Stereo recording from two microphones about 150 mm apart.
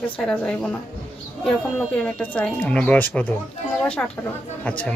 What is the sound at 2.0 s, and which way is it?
Speech, 5° left (ahead or behind).